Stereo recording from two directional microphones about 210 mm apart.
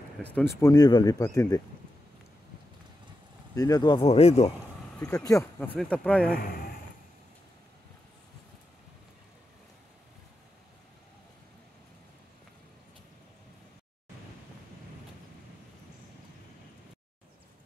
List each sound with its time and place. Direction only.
0.6 s speech: 15° left (ahead or behind)
3.5 s speech: 15° left (ahead or behind)
5.0 s speech: 15° left (ahead or behind)